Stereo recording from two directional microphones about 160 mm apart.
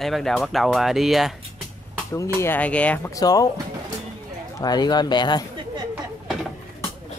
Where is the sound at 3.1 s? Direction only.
20° left (ahead or behind).